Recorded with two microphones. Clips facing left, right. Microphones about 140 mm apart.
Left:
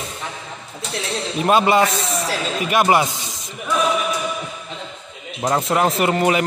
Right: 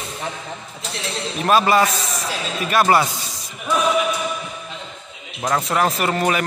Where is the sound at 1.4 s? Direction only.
20° left (ahead or behind).